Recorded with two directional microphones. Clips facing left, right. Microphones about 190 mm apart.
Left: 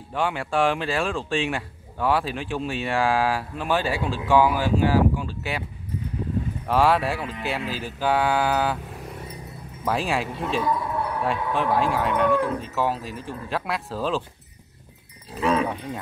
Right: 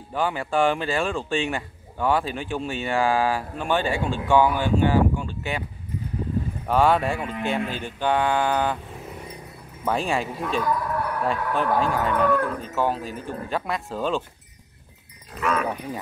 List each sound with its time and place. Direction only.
0.1 s speech: centre (ahead or behind)
6.7 s speech: centre (ahead or behind)
10.6 s basketball bounce: 25° left (ahead or behind)
11.5 s speech: centre (ahead or behind)
15.3 s speech: 30° left (ahead or behind)